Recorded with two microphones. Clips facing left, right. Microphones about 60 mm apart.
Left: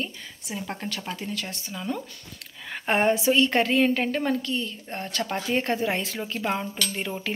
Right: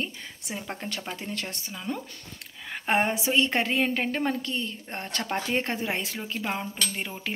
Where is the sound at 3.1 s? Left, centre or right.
Centre.